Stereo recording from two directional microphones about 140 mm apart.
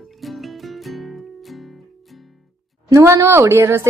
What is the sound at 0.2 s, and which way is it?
Music, centre (ahead or behind).